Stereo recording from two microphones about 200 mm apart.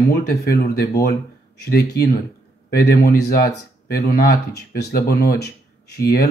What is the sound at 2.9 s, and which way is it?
Speech, 50° left (ahead or behind).